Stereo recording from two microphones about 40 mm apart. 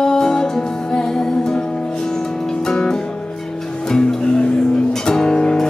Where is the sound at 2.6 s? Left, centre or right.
Centre.